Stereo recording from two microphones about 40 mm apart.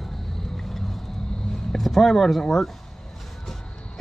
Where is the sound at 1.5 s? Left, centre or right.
Centre.